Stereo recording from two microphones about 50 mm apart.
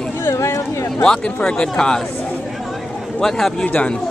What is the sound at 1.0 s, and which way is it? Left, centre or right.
Speech, centre.